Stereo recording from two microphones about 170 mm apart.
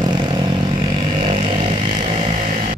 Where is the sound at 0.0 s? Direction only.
25° right (ahead or behind).